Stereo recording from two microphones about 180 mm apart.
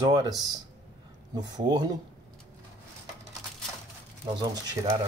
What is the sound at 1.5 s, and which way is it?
Speech, 20° right (ahead or behind).